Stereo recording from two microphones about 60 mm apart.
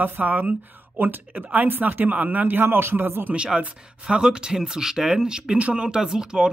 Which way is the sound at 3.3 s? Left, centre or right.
Centre.